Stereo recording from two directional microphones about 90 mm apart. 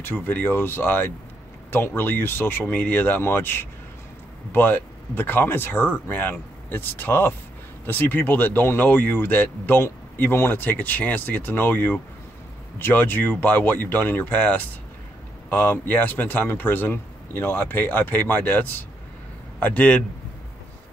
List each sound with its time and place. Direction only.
0.0 s a man's voice: 20° left (ahead or behind)